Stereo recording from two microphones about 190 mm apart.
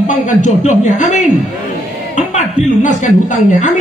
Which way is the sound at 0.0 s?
40° left (ahead or behind).